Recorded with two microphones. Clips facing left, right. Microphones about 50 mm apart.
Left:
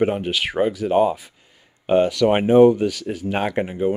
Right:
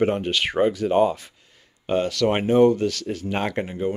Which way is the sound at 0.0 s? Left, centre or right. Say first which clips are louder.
Left 1 dB; centre.